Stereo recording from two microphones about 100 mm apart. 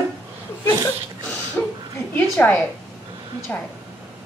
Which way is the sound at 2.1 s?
15° left (ahead or behind).